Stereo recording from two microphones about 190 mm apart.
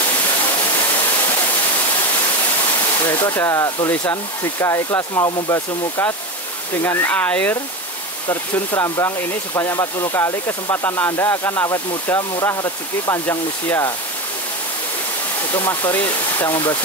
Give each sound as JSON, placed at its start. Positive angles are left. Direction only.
{"t": 3.0, "sound": "speech", "side_deg": 10}
{"t": 15.5, "sound": "speech", "side_deg": 10}
{"t": 16.3, "sound": "speech", "side_deg": 25}